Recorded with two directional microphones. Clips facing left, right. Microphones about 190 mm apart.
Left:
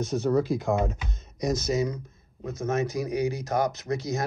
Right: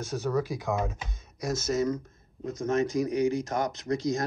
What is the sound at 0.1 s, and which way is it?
Speech, 10° left (ahead or behind).